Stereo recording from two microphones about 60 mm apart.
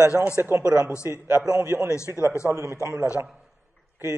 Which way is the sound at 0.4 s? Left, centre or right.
Right.